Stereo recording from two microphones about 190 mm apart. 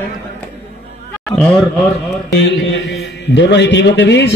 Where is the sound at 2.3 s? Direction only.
65° left (ahead or behind).